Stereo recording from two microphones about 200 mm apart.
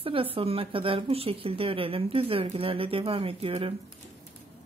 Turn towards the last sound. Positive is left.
turn(degrees=-30)  # may be behind; listen again after turning